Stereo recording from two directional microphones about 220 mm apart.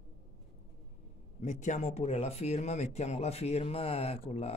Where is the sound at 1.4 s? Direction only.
35° left (ahead or behind).